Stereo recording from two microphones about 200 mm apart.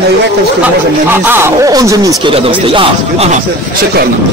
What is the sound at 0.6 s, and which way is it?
Speech, 10° right (ahead or behind).